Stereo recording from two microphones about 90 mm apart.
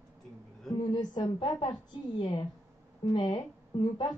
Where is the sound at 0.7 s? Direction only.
55° left (ahead or behind).